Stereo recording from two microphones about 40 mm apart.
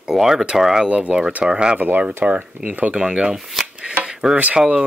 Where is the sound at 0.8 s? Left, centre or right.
Right.